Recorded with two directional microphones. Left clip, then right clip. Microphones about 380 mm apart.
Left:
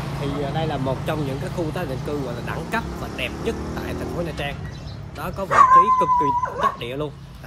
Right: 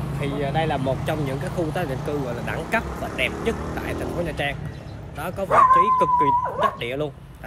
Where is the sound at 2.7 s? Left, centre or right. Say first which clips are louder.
Right 3 dB; centre.